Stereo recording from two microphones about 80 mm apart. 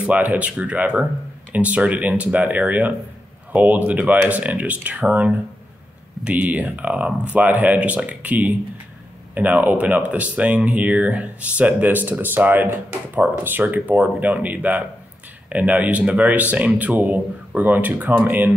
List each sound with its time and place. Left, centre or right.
0.0 s speech: centre